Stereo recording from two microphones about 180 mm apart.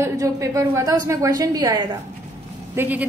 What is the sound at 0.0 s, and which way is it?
A woman's voice, 15° right (ahead or behind).